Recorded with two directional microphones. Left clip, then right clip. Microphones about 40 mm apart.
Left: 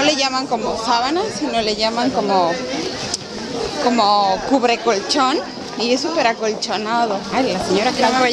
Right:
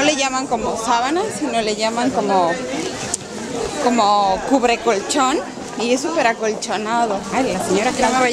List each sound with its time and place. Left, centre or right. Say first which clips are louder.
0.0 s chatter: left 1 dB; centre
0.8 s speech: even; centre
1.1 s a woman's voice: even; centre
3.8 s a woman's voice: even; centre
7.3 s speech: left 1 dB; centre